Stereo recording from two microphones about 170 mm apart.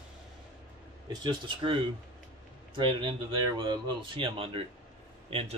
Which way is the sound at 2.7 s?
30° right (ahead or behind).